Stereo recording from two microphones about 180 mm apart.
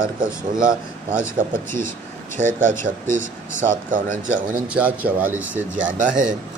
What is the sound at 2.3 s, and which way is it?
Speech, 45° right (ahead or behind).